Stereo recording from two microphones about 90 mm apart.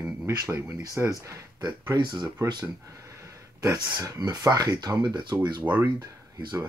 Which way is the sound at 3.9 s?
50° right (ahead or behind).